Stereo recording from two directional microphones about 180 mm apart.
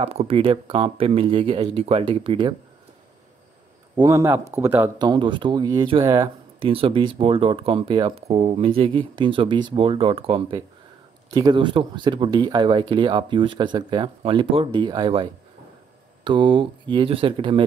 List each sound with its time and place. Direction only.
0.0 s speech: 35° right (ahead or behind)
3.9 s speech: 20° right (ahead or behind)
16.3 s speech: 25° right (ahead or behind)